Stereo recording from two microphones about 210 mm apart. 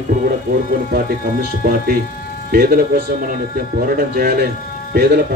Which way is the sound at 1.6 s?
45° right (ahead or behind).